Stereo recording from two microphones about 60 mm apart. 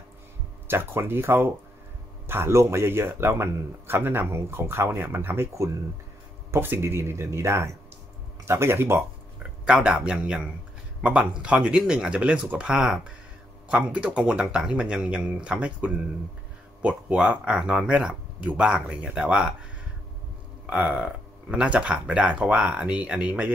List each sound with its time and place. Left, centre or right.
0.7 s a man's voice: right
6.5 s speech: right
9.7 s speech: centre
12.2 s speech: right
20.7 s speech: centre